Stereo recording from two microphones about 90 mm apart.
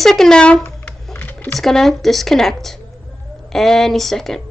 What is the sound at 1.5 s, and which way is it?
A woman's voice, 5° left (ahead or behind).